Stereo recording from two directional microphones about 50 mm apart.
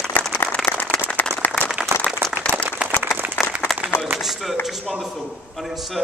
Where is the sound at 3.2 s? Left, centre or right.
Right.